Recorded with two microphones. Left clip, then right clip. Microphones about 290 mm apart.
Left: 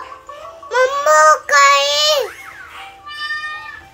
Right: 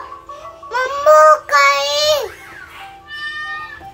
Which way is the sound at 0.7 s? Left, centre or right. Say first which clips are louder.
Right 1 dB; left.